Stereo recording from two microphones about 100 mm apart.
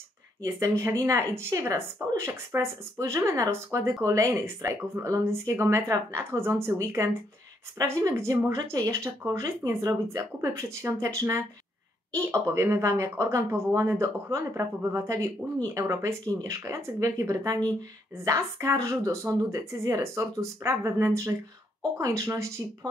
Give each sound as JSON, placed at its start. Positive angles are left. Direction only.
{"t": 0.4, "sound": "speech", "side_deg": -30}